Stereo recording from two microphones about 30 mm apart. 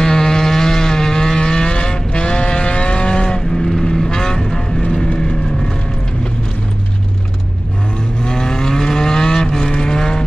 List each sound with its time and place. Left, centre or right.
0.0 s vehicle: centre
8.2 s vehicle: left